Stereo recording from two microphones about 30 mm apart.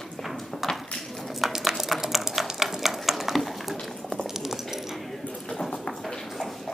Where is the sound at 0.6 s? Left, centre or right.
Centre.